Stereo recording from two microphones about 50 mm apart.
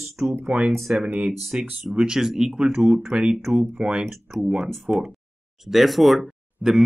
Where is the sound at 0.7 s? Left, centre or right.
Centre.